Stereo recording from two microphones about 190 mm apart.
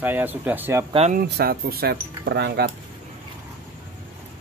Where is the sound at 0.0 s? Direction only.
10° right (ahead or behind).